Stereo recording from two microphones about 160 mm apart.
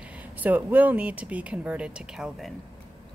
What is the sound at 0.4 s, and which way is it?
A woman's voice, 10° right (ahead or behind).